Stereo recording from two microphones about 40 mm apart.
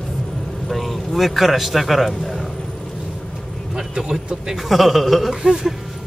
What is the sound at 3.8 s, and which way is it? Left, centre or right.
Vehicle, centre.